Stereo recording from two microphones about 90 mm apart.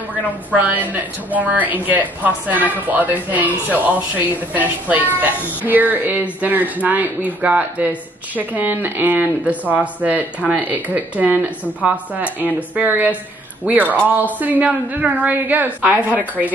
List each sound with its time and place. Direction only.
0.1 s a woman's voice: 15° right (ahead or behind)